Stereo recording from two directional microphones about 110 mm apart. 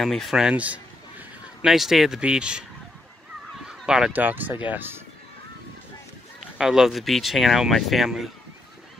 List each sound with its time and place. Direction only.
0.0 s speech: 5° left (ahead or behind); by 5.0 s 20° right (ahead or behind)
6.6 s speech: 5° right (ahead or behind)